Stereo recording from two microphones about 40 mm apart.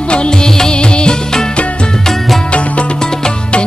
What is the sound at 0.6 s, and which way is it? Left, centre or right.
Music, left.